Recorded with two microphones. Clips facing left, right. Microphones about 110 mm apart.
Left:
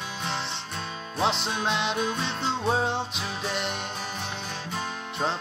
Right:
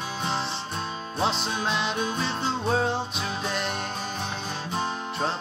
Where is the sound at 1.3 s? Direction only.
25° left (ahead or behind).